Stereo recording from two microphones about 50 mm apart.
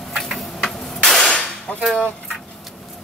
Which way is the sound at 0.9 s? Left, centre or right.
Centre.